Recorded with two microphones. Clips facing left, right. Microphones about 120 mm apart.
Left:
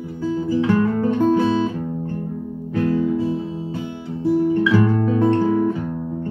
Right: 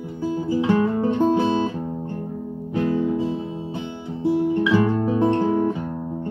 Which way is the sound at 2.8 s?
20° right (ahead or behind).